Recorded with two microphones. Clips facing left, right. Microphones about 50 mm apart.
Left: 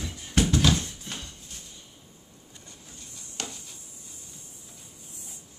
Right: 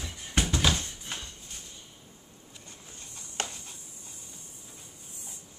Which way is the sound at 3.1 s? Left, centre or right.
Right.